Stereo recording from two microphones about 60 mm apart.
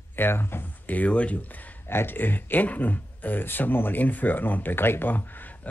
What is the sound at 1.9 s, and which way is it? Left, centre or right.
A man's voice, left.